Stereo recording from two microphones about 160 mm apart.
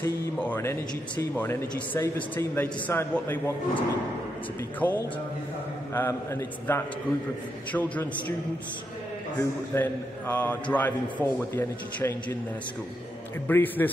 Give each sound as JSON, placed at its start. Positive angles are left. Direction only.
{"t": 0.0, "sound": "speech", "side_deg": 15}
{"t": 9.4, "sound": "speech", "side_deg": 10}
{"t": 13.5, "sound": "speech", "side_deg": 10}